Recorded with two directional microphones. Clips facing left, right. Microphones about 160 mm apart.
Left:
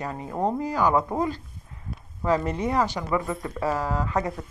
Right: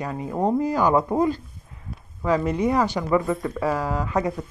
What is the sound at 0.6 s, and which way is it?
Speech, 20° right (ahead or behind).